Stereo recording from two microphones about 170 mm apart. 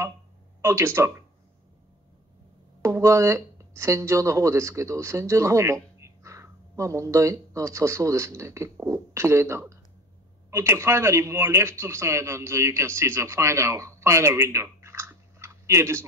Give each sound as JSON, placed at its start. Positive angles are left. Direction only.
{"t": 0.6, "sound": "speech", "side_deg": -15}
{"t": 2.8, "sound": "speech", "side_deg": -15}